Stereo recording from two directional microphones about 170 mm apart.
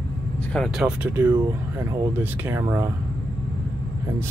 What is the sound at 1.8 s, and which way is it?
Speech, 15° right (ahead or behind).